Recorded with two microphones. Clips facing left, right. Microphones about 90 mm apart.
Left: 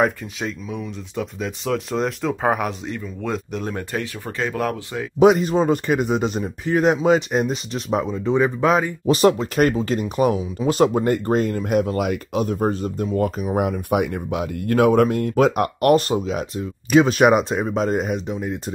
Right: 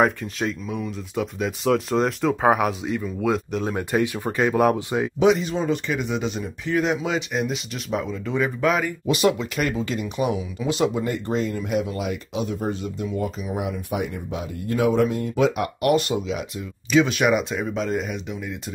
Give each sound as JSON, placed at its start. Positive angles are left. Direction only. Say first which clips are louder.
{"t": 0.0, "sound": "speech", "louder": "even", "side_deg": 0}
{"t": 3.9, "sound": "speech", "louder": "right 5 dB", "side_deg": -15}
{"t": 5.2, "sound": "speech", "louder": "left 6 dB", "side_deg": 45}